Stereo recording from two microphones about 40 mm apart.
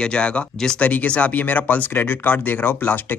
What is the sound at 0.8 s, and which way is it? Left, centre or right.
Speech, left.